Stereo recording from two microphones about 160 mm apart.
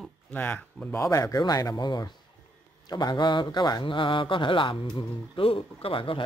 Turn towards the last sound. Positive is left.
turn(degrees=35)  # may be behind; listen again after turning